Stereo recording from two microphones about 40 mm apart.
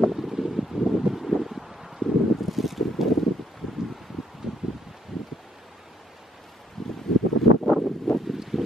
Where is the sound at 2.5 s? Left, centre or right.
Centre.